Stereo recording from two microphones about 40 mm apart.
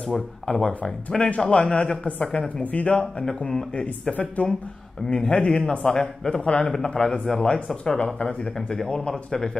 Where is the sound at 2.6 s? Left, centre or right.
Left.